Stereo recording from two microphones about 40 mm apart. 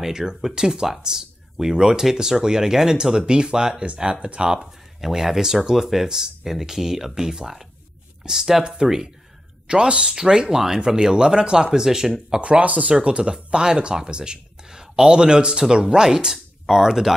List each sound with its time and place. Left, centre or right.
0.0 s speech: centre
5.0 s speech: centre
12.4 s speech: right
12.9 s speech: right; by 17.1 s centre